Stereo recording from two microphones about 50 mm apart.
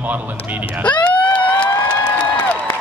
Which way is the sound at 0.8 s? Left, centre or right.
Left.